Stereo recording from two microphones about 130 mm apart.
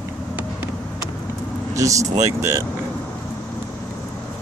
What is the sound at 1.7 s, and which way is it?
Speech, 25° right (ahead or behind).